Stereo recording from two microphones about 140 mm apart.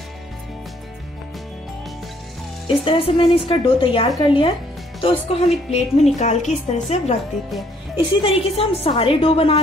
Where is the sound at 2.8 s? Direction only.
40° left (ahead or behind).